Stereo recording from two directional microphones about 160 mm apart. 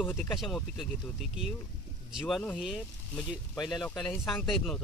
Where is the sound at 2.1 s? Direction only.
Centre (ahead or behind).